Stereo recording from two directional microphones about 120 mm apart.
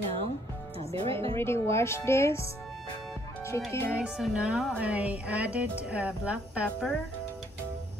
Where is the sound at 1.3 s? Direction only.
20° left (ahead or behind).